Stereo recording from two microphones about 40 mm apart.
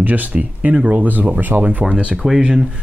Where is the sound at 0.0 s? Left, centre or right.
Right.